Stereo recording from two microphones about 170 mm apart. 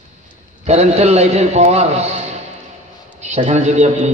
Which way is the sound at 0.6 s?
40° right (ahead or behind).